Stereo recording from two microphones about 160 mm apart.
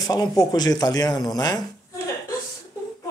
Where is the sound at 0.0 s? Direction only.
25° left (ahead or behind).